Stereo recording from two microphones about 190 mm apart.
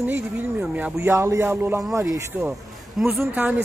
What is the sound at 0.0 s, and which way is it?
Speech, 10° right (ahead or behind).